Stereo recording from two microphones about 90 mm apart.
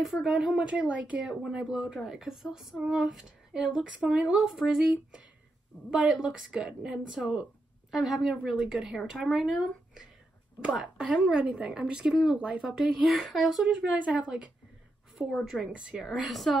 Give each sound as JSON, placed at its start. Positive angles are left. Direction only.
{"t": 0.0, "sound": "a woman's voice", "side_deg": -5}